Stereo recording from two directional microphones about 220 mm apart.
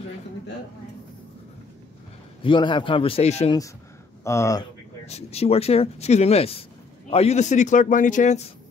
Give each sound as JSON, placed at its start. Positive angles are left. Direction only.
{"t": 2.4, "sound": "speech", "side_deg": 20}
{"t": 4.2, "sound": "speech", "side_deg": 15}
{"t": 5.0, "sound": "a man's voice", "side_deg": 30}